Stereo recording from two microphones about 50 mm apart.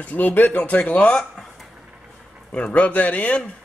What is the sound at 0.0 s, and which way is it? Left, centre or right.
A man's voice, left.